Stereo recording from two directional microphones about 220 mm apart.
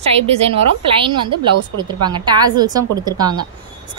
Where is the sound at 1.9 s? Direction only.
20° right (ahead or behind).